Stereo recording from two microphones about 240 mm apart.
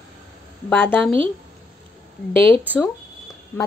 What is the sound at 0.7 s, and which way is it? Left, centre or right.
Speech, centre.